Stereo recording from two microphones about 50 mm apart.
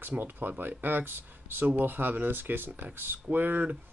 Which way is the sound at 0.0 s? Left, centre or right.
Right.